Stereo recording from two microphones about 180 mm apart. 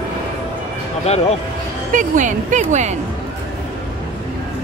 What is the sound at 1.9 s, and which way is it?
Speech, 45° right (ahead or behind).